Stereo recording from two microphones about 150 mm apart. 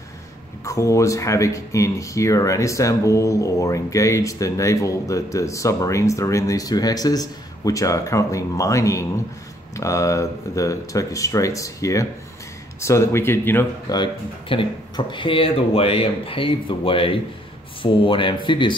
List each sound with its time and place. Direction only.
0.7 s speech: 20° left (ahead or behind)
13.9 s speech: 35° left (ahead or behind)